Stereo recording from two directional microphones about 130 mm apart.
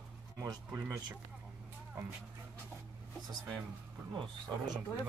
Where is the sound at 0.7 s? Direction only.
20° right (ahead or behind).